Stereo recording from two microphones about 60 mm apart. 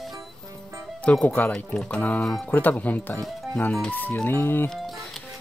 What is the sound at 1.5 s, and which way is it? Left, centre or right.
Speech, centre.